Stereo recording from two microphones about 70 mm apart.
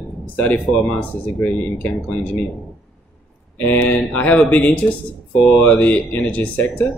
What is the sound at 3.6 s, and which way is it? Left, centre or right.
Speech, left.